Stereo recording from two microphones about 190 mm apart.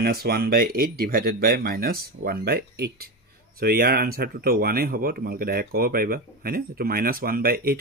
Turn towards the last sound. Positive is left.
turn(degrees=-50)  # may be behind; listen again after turning